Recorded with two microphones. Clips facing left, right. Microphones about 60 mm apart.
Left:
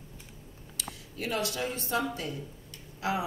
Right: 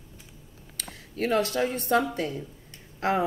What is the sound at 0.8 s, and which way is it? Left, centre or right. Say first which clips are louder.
Speech: right 8 dB; right.